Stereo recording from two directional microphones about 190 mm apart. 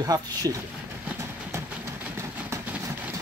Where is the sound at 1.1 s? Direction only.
15° right (ahead or behind).